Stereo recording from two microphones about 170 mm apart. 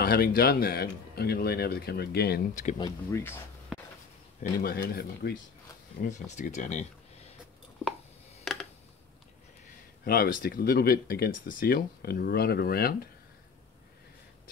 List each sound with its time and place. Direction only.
0.0 s speech: 60° left (ahead or behind)
2.8 s speech: 15° left (ahead or behind)
4.4 s speech: 60° left (ahead or behind)
6.0 s speech: 45° left (ahead or behind)
10.0 s speech: 65° left (ahead or behind)